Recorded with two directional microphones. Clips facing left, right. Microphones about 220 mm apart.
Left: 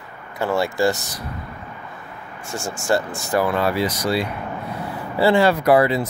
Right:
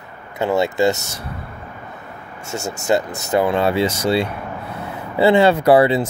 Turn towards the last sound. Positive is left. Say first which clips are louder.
# right 3 dB
turn(degrees=-30)  # may be behind; listen again after turning